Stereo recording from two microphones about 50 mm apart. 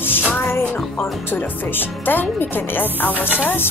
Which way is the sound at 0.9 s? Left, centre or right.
Left.